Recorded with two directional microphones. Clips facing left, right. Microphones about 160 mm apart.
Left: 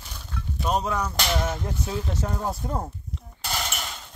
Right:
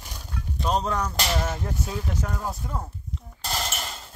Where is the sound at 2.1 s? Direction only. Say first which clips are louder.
Left 2 dB; 25° left (ahead or behind).